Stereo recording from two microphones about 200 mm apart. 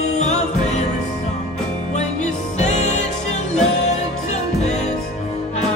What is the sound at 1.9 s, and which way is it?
Music, 35° left (ahead or behind).